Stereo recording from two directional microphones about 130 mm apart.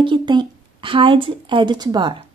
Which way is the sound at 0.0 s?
35° right (ahead or behind).